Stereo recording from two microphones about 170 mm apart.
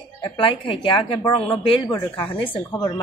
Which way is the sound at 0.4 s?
30° left (ahead or behind).